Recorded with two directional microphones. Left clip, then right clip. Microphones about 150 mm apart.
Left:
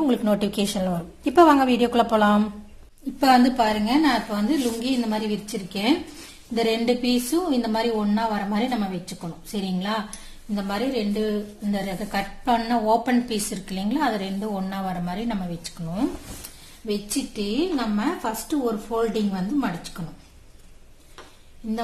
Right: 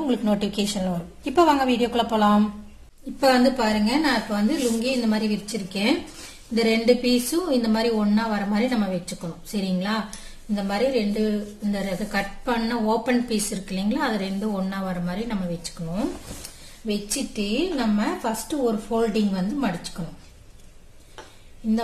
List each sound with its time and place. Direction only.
0.0 s a woman's voice: 30° left (ahead or behind)
10.5 s a woman's voice: 40° left (ahead or behind)
17.1 s a woman's voice: 35° left (ahead or behind)